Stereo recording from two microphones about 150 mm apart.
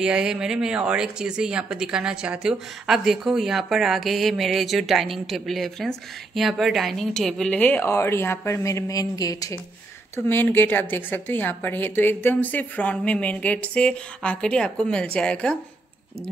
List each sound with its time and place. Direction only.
0.0 s a woman's voice: 5° right (ahead or behind)